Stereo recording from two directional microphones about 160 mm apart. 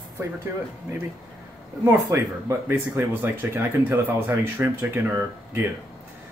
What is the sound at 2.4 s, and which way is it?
Speech, 15° right (ahead or behind).